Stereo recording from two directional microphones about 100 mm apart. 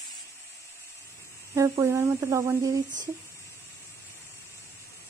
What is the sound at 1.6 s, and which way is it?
Speech, 30° right (ahead or behind).